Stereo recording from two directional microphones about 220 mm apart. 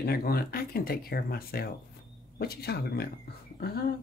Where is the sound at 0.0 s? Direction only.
45° left (ahead or behind).